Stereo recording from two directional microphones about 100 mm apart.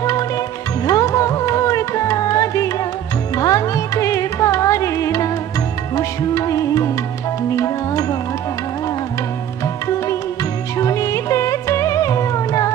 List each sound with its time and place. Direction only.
0.8 s music: 35° left (ahead or behind)
10.8 s music: 35° left (ahead or behind)